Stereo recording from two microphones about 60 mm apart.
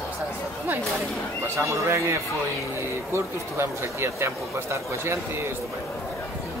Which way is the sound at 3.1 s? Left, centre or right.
Right.